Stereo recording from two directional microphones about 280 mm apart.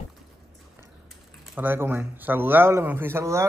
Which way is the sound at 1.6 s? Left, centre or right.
Centre.